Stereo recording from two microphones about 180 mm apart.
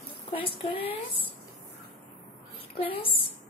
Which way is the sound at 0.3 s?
30° left (ahead or behind).